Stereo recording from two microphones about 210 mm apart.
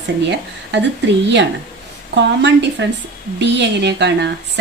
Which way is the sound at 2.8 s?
55° right (ahead or behind).